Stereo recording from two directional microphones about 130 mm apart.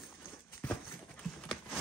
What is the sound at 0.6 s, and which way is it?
Clip-clop, 20° left (ahead or behind).